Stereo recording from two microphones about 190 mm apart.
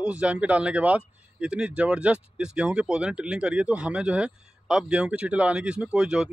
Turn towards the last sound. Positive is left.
turn(degrees=-5)  # may be behind; listen again after turning